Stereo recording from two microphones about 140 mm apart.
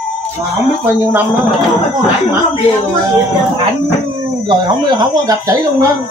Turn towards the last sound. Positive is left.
turn(degrees=-25)  # may be behind; listen again after turning